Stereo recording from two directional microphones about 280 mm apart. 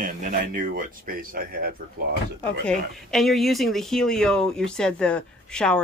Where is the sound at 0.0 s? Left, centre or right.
Right.